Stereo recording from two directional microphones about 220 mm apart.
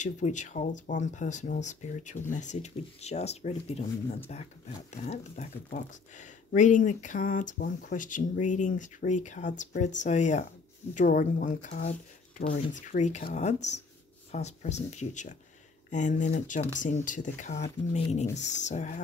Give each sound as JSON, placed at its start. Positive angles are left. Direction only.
{"t": 0.0, "sound": "speech", "side_deg": 35}